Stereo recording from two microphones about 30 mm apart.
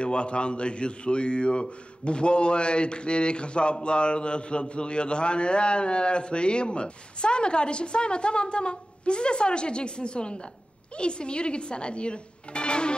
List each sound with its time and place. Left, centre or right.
0.0 s a man's voice: left